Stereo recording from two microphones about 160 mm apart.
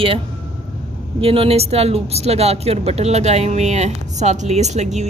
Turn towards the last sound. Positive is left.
turn(degrees=-45)  # may be behind; listen again after turning